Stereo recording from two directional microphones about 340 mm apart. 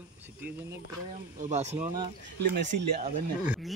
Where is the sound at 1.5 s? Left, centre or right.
Centre.